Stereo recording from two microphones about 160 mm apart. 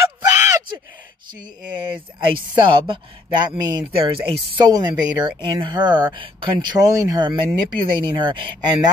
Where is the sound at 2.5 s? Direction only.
30° right (ahead or behind).